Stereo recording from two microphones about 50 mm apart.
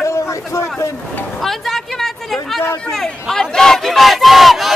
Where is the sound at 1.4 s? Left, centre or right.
Centre.